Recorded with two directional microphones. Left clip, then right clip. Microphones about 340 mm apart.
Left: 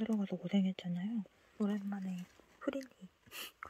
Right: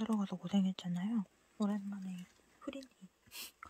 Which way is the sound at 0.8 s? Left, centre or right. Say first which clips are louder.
Right 2 dB; right.